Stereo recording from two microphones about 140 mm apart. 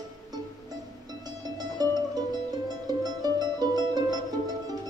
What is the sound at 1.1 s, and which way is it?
Music, 25° right (ahead or behind).